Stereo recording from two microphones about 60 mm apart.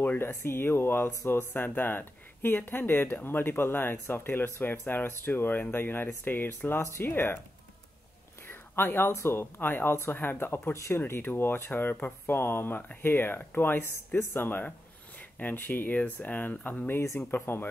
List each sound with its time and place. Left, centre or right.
0.0 s speech: left
8.5 s whispering: left
9.1 s speech: left
17.0 s speech: left
17.3 s speech: left